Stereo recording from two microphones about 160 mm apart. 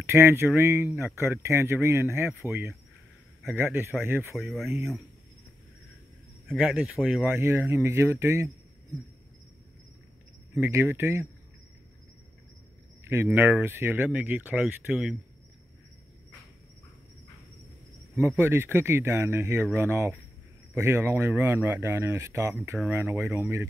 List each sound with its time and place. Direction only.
0.1 s speech: 15° right (ahead or behind)
4.4 s speech: centre (ahead or behind)
6.4 s speech: centre (ahead or behind); by 8.5 s 15° right (ahead or behind)
10.5 s speech: 15° right (ahead or behind)
13.0 s speech: 15° right (ahead or behind)
18.2 s speech: 10° right (ahead or behind)